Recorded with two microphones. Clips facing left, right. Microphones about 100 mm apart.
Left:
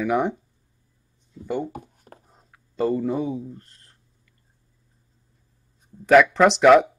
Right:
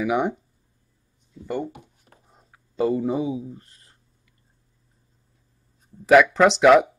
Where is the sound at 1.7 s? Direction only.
45° left (ahead or behind).